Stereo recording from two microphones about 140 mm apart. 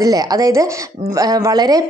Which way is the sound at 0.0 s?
25° right (ahead or behind).